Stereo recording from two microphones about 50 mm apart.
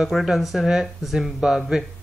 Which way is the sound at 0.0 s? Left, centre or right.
Centre.